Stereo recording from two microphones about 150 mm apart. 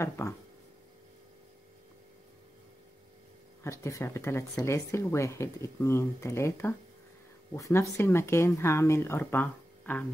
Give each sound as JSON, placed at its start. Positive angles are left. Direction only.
{"t": 0.2, "sound": "speech", "side_deg": 15}
{"t": 3.6, "sound": "speech", "side_deg": 20}